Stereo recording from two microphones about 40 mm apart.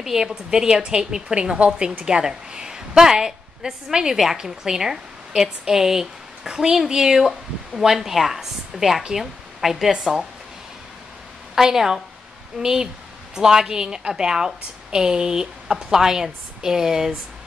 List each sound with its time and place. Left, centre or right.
0.0 s a woman's voice: centre
11.5 s a woman's voice: centre